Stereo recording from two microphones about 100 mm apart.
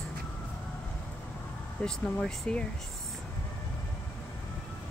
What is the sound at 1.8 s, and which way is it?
Speech, 10° left (ahead or behind).